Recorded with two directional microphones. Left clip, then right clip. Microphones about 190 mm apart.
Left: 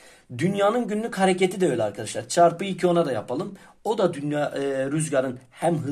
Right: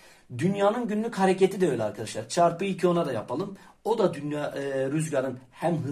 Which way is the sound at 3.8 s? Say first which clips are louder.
Left 2 dB; 55° left (ahead or behind).